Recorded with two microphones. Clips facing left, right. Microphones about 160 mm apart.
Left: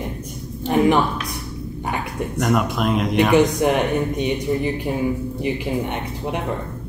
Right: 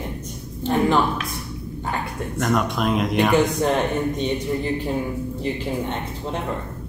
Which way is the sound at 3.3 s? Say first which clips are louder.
Left 5 dB; 15° left (ahead or behind).